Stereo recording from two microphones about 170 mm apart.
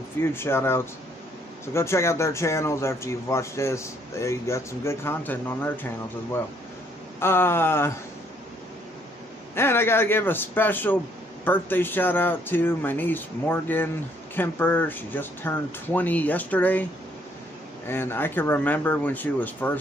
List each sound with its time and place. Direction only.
0.2 s speech: 15° left (ahead or behind)
7.2 s speech: 15° left (ahead or behind)
9.6 s speech: 15° left (ahead or behind)
17.8 s speech: 15° left (ahead or behind)